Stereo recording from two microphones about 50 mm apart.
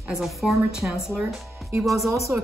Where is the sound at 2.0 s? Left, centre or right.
Right.